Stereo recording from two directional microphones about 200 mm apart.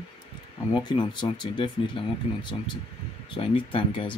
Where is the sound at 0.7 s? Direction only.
20° left (ahead or behind).